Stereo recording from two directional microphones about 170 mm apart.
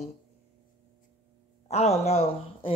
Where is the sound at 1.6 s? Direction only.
40° left (ahead or behind).